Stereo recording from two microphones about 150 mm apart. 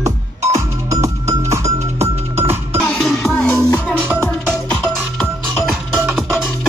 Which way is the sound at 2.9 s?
Centre (ahead or behind).